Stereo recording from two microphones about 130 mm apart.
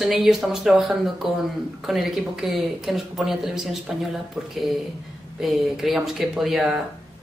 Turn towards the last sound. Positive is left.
turn(degrees=0)  # may be behind; listen again after turning